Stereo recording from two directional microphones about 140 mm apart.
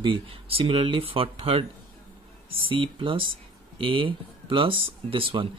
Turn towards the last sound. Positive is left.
turn(degrees=-40)  # may be behind; listen again after turning